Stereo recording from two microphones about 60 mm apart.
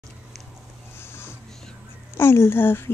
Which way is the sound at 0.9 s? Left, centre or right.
Left.